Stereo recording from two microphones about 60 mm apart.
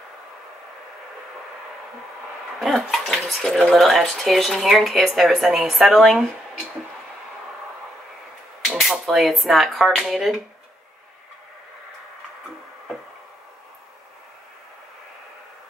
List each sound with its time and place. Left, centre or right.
2.6 s bathtub: centre
3.5 s speech: centre
8.6 s a sound: centre
9.0 s speech: centre